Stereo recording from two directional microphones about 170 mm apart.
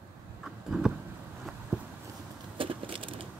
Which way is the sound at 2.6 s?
30° right (ahead or behind).